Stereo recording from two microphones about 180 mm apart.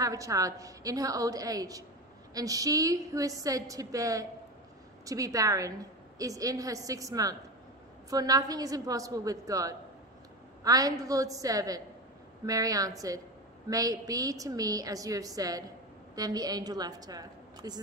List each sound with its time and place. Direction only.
0.0 s a woman's voice: 20° right (ahead or behind)